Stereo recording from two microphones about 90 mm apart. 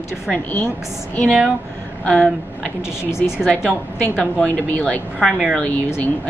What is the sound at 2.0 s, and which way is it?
Speech, 10° left (ahead or behind).